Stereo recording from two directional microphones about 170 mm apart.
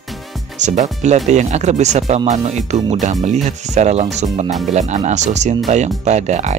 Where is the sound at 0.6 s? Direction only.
45° right (ahead or behind).